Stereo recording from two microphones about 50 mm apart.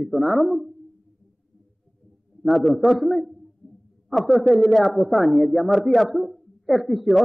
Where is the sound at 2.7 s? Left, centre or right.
Centre.